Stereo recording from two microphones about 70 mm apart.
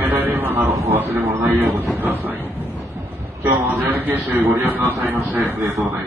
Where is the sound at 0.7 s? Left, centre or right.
Right.